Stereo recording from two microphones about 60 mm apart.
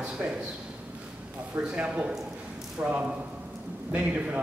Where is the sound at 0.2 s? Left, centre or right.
Right.